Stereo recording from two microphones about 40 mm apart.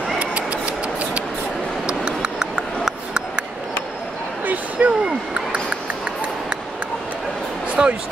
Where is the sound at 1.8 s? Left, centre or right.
Right.